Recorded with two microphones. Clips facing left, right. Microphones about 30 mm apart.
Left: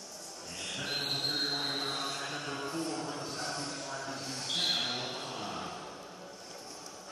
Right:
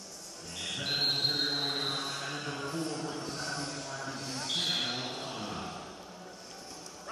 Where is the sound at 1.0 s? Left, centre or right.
Centre.